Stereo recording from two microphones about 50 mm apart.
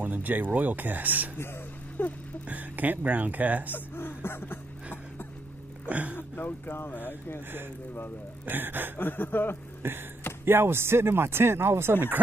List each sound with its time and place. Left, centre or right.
0.0 s speech: right
2.0 s speech: left
2.4 s speech: right
3.7 s music: left
5.9 s speech: right
6.1 s speech: left
8.5 s speech: right
8.9 s speech: left
9.8 s speech: right